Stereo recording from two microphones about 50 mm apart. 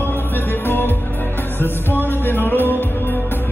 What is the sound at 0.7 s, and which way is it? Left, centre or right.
Music, left.